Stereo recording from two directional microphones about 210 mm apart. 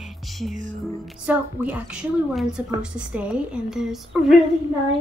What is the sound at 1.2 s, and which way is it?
Speech, 5° right (ahead or behind).